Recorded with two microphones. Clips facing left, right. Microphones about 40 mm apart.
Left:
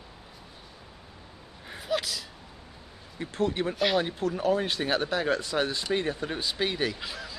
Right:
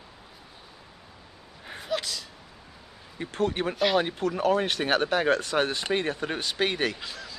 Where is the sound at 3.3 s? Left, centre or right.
Right.